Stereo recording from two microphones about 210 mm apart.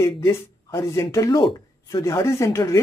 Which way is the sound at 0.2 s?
15° left (ahead or behind).